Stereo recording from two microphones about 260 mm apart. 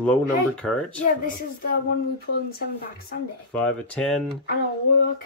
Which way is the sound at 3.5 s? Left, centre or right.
Centre.